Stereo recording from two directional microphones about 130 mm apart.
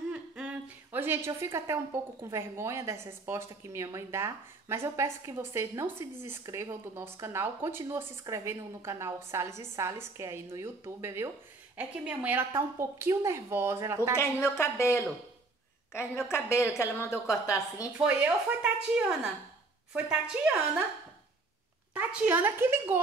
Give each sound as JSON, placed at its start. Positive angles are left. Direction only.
{"t": 0.9, "sound": "a woman's voice", "side_deg": -15}
{"t": 11.7, "sound": "a woman's voice", "side_deg": -10}
{"t": 14.1, "sound": "a woman's voice", "side_deg": 20}
{"t": 17.9, "sound": "speech", "side_deg": -10}
{"t": 21.9, "sound": "speech", "side_deg": -10}